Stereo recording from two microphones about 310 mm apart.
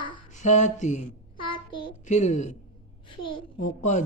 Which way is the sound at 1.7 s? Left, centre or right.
Centre.